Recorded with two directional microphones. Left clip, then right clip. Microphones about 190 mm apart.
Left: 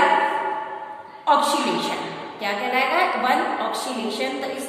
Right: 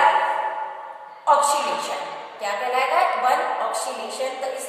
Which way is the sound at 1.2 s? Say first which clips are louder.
Right 1 dB; centre (ahead or behind).